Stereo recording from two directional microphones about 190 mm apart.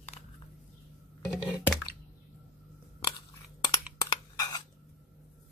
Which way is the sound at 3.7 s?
20° left (ahead or behind).